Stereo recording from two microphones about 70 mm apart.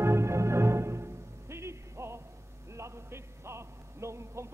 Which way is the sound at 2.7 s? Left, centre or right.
Right.